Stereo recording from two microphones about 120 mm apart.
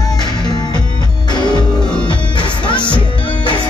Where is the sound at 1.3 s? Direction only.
40° left (ahead or behind).